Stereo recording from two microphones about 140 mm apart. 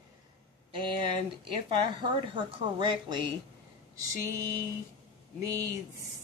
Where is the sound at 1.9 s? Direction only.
35° right (ahead or behind).